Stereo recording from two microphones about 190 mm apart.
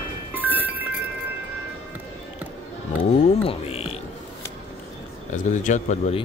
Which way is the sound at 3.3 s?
30° left (ahead or behind).